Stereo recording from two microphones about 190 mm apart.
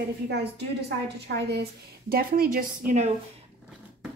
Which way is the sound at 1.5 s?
55° right (ahead or behind).